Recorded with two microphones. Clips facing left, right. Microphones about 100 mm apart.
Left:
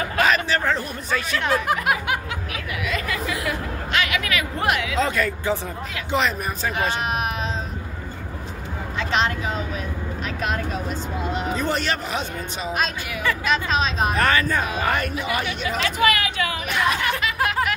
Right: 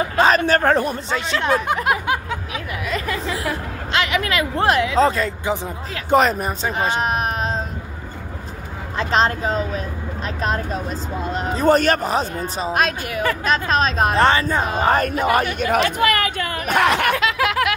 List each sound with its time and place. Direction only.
0.5 s speech: 50° right (ahead or behind)
1.1 s speech: 25° right (ahead or behind)
2.9 s a sound: 30° right (ahead or behind)
6.0 s speech: 45° right (ahead or behind)
6.4 s speech: 30° right (ahead or behind)
7.0 s a sound: 35° right (ahead or behind)
8.9 s speech: 35° right (ahead or behind)
12.7 s speech: 50° right (ahead or behind)
14.1 s speech: 30° right (ahead or behind); by 16.8 s 50° right (ahead or behind)
16.8 s snicker: 75° right (ahead or behind); by 17.7 s 90° right